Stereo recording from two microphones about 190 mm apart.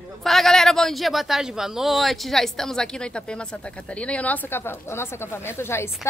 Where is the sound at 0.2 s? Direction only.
Centre (ahead or behind).